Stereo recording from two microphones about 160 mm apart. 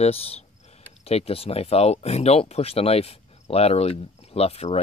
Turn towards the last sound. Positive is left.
turn(degrees=40)  # may be behind; listen again after turning